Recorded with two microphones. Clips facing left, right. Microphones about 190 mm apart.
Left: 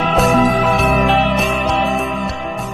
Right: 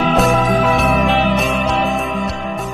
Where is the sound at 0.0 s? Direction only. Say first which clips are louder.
Left 1 dB; centre (ahead or behind).